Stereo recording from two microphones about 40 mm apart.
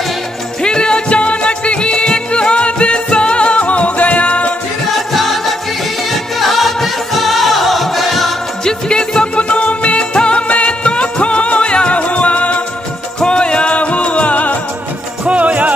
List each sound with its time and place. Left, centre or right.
0.6 s music: left
5.1 s music: centre
8.6 s music: centre; by 14.6 s left
15.2 s music: right